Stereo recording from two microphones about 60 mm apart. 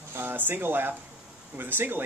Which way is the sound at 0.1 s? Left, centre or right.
Right.